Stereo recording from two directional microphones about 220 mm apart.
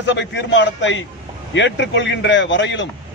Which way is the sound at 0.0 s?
55° left (ahead or behind).